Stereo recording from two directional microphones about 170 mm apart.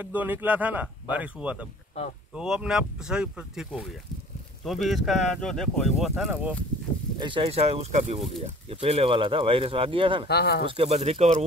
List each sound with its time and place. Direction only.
0.0 s speech: 10° right (ahead or behind)
7.2 s speech: 30° right (ahead or behind)
10.2 s speech: 70° left (ahead or behind)
10.7 s speech: 35° right (ahead or behind)